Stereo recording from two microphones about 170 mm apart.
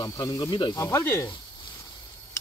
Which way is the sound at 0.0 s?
20° left (ahead or behind).